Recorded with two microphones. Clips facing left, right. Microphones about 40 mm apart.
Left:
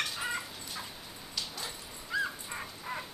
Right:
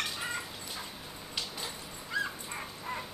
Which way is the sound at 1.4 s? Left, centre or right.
Centre.